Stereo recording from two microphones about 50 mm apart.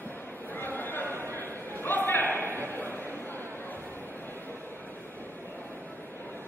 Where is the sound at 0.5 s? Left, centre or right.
Left.